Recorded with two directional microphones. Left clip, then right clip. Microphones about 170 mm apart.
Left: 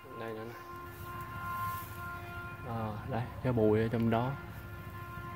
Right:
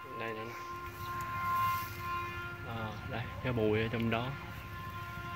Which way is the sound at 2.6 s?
40° left (ahead or behind).